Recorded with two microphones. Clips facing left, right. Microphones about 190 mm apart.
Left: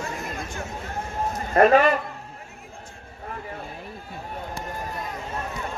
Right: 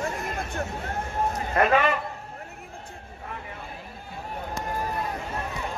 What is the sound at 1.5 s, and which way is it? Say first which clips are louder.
Speech: left 6 dB; 40° left (ahead or behind).